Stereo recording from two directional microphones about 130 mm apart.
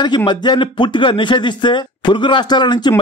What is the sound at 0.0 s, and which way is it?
Speech, 35° left (ahead or behind).